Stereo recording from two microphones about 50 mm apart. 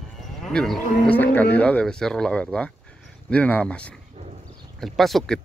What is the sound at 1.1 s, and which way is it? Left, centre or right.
Speech, left.